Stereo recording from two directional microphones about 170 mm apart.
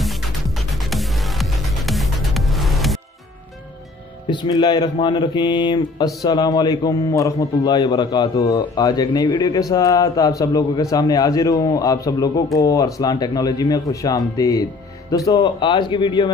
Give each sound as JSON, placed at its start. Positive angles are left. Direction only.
{"t": 0.0, "sound": "music", "side_deg": 0}
{"t": 4.3, "sound": "a man's voice", "side_deg": 25}